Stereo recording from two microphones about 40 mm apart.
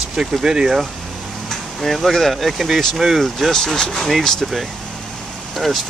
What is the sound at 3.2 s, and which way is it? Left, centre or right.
Speech, centre.